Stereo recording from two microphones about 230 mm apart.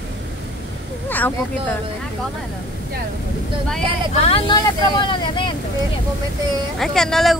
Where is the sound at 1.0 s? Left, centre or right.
Centre.